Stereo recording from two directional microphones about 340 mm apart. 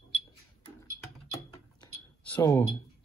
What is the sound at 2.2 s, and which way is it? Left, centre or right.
Speech, centre.